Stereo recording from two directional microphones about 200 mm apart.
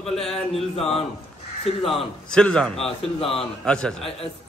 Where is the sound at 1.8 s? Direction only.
Centre (ahead or behind).